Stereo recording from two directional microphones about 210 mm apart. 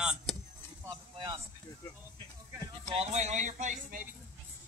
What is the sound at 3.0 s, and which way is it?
Speech, 30° right (ahead or behind).